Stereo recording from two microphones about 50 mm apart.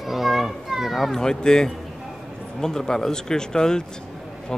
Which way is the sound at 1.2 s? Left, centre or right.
Centre.